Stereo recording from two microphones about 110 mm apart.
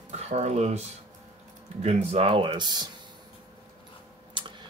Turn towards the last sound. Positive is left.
turn(degrees=-45)  # may be behind; listen again after turning